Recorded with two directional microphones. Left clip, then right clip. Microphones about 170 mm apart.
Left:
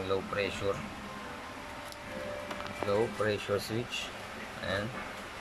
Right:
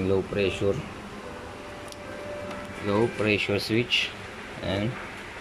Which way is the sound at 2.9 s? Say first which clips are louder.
Right 6 dB; centre (ahead or behind).